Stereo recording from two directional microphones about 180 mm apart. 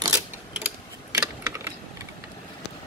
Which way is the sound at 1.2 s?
15° right (ahead or behind).